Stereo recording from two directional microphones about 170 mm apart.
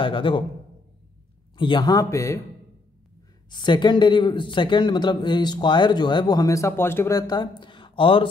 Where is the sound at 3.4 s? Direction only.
25° left (ahead or behind).